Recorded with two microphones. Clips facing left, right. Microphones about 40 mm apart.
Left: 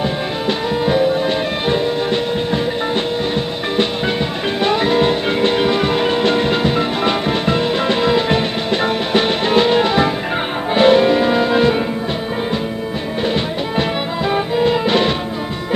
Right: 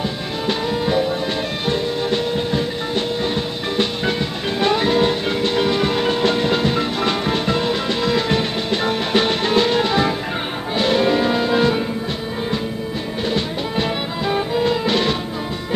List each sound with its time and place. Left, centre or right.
0.5 s music: left
4.6 s music: left
13.3 s music: left